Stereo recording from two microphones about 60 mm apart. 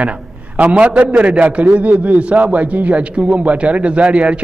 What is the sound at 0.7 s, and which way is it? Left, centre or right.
A man's voice, right.